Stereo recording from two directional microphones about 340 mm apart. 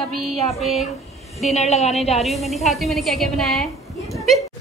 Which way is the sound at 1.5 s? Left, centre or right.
Centre.